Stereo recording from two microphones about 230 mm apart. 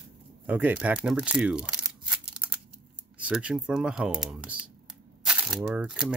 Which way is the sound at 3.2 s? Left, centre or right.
Centre.